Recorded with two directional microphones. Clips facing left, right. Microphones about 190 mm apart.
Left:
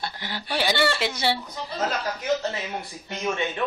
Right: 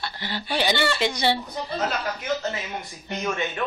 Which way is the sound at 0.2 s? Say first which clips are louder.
Right 2 dB; 10° left (ahead or behind).